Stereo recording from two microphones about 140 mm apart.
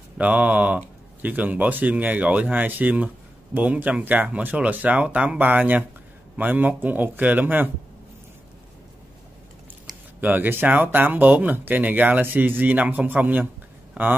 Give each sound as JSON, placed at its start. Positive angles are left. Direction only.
{"t": 0.2, "sound": "speech", "side_deg": -10}
{"t": 10.2, "sound": "speech", "side_deg": -15}